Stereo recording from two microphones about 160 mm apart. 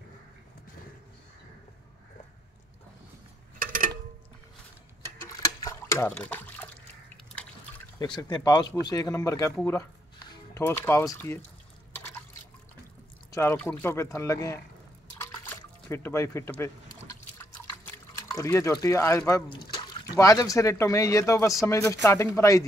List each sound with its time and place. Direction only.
3.5 s a sound: 60° right (ahead or behind)
5.2 s liquid: 20° left (ahead or behind)
8.0 s speech: 25° left (ahead or behind)
13.3 s speech: 15° left (ahead or behind)
15.1 s a sound: 15° left (ahead or behind)
18.4 s speech: 20° left (ahead or behind)
19.5 s speech: 30° left (ahead or behind)